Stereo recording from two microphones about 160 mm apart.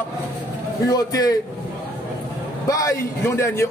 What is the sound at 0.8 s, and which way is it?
Speech, 25° left (ahead or behind).